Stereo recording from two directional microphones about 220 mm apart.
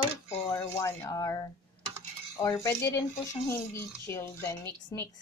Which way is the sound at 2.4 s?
15° left (ahead or behind).